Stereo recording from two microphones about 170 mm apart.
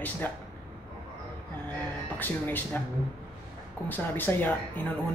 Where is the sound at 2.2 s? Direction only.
10° left (ahead or behind).